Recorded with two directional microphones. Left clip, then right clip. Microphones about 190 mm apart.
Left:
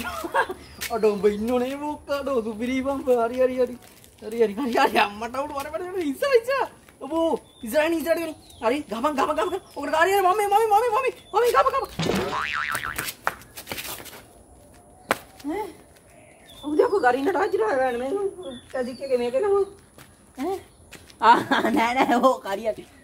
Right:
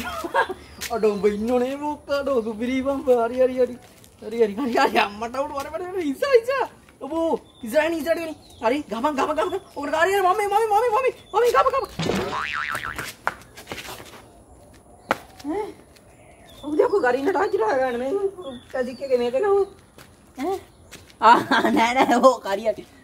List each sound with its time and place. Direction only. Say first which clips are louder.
0.0 s speech: right 2 dB; 10° left (ahead or behind)
12.0 s a woman's voice: even; centre (ahead or behind)
12.9 s a sound: even; 50° left (ahead or behind)
16.7 s speech: even; 35° left (ahead or behind)
17.6 s speech: right 1 dB; 15° left (ahead or behind)
18.7 s a woman's voice: right 2 dB; centre (ahead or behind)